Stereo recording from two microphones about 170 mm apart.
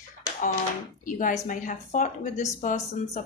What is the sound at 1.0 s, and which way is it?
Speech, 50° left (ahead or behind).